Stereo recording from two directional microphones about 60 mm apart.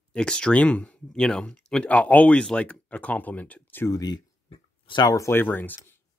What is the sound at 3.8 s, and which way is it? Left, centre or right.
Speech, left.